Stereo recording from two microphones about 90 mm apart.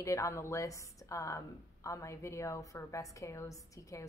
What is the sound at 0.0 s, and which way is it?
A woman's voice, 35° left (ahead or behind).